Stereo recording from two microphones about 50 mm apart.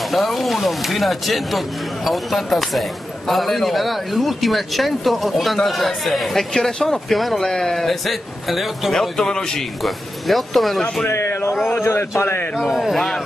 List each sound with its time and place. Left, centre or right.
0.1 s a man's voice: centre
9.0 s speech: centre
9.8 s a man's voice: centre
11.1 s speech: left
12.6 s a man's voice: centre
12.9 s speech: centre